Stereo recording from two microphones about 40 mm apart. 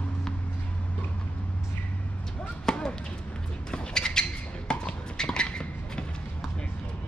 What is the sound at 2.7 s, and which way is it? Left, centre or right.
Basketball bounce, centre.